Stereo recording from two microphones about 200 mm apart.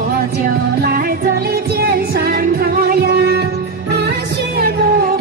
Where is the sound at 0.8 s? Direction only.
50° right (ahead or behind).